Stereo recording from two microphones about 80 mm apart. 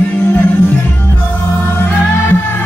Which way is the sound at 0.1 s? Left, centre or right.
Left.